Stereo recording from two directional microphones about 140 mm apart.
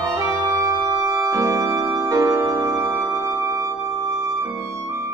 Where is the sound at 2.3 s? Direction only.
25° right (ahead or behind).